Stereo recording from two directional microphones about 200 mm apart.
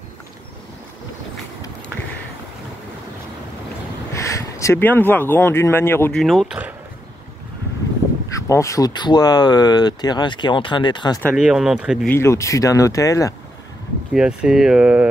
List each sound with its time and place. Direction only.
4.1 s speech: 15° left (ahead or behind)
6.2 s speech: centre (ahead or behind)
8.3 s speech: 15° left (ahead or behind)
11.3 s speech: 5° right (ahead or behind)
12.1 s speech: 15° left (ahead or behind)
14.1 s speech: 5° right (ahead or behind)